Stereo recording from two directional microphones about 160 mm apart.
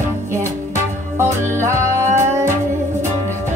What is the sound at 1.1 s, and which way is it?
Music, 15° right (ahead or behind).